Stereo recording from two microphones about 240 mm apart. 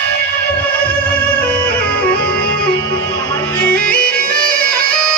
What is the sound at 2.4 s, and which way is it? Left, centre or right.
Music, left.